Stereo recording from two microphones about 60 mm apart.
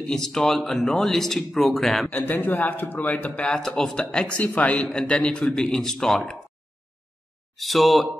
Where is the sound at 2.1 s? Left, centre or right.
Left.